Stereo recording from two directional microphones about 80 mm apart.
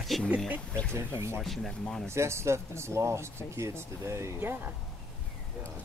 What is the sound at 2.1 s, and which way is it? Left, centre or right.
Speech, right.